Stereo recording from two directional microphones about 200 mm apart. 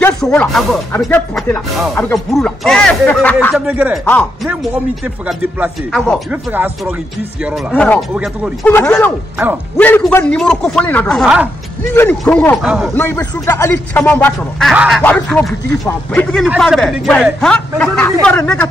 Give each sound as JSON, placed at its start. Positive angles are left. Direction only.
{"t": 0.0, "sound": "speech", "side_deg": 5}
{"t": 4.0, "sound": "speech", "side_deg": 10}
{"t": 5.0, "sound": "speech", "side_deg": -5}
{"t": 6.3, "sound": "speech", "side_deg": -10}
{"t": 7.7, "sound": "speech", "side_deg": 5}
{"t": 11.9, "sound": "speech", "side_deg": 10}
{"t": 12.6, "sound": "speech", "side_deg": -5}
{"t": 12.9, "sound": "speech", "side_deg": 10}
{"t": 14.7, "sound": "speech", "side_deg": 0}